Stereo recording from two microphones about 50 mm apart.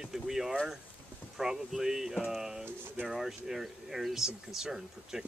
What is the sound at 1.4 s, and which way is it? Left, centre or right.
Speech, centre.